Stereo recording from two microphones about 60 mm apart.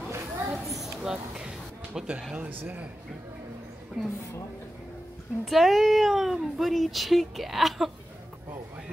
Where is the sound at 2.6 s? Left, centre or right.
Right.